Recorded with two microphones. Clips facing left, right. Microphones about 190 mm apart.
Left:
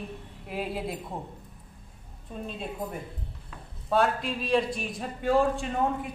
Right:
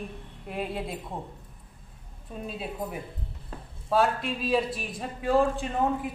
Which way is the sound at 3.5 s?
40° right (ahead or behind).